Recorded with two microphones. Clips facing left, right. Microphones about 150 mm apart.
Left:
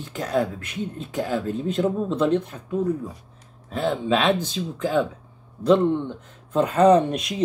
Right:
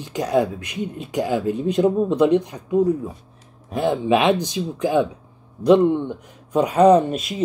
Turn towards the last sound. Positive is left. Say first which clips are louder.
# right 2 dB
turn(degrees=-5)  # may be behind; listen again after turning